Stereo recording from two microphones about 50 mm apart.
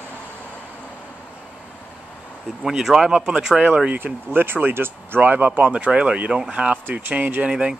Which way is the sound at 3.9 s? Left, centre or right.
Right.